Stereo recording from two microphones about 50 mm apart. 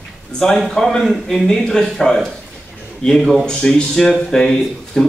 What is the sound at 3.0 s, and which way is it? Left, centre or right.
A man's voice, centre.